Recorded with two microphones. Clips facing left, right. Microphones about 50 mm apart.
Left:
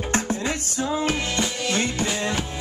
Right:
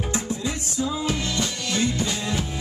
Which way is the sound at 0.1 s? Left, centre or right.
Left.